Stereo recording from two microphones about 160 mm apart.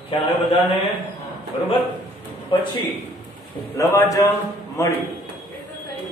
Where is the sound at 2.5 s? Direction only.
30° left (ahead or behind).